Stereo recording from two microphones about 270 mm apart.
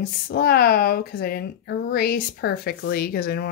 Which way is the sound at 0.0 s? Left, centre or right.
Left.